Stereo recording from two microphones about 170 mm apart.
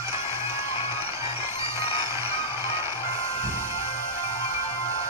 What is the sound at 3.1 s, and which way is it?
Music, 40° left (ahead or behind).